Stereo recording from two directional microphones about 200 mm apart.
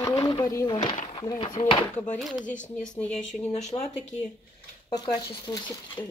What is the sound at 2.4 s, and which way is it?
Speech, 40° left (ahead or behind).